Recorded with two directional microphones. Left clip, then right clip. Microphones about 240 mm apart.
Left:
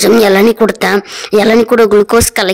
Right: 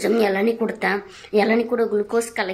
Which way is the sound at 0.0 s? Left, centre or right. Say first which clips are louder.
Left 12 dB; left.